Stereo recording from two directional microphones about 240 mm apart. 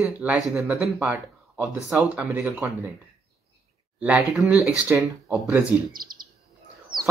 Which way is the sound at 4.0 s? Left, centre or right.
Centre.